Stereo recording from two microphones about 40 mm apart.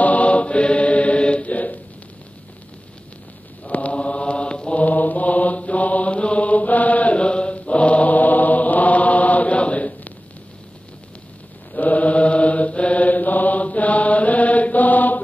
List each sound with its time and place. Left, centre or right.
0.0 s chant: left
3.6 s mantra: left
4.8 s mantra: left
11.7 s mantra: left